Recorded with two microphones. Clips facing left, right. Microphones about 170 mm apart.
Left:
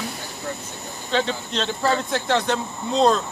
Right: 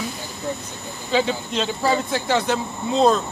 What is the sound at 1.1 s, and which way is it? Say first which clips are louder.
Speech: right 2 dB; 5° right (ahead or behind).